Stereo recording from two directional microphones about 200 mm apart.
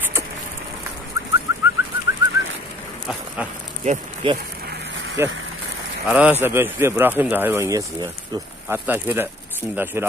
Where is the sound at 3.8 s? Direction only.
25° right (ahead or behind).